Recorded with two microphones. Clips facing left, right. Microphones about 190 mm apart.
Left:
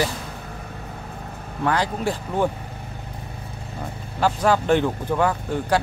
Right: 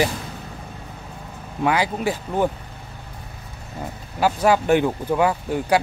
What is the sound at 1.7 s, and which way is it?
Speech, 10° right (ahead or behind).